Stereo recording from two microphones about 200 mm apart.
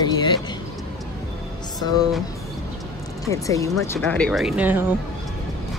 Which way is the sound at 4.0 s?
5° left (ahead or behind).